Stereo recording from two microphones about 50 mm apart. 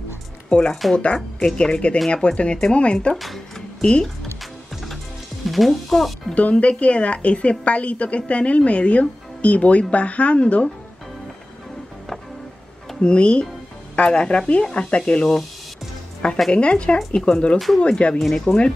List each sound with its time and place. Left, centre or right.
0.5 s a woman's voice: centre
3.2 s a sound: centre
5.5 s speech: centre
6.3 s a woman's voice: left
13.0 s a woman's voice: centre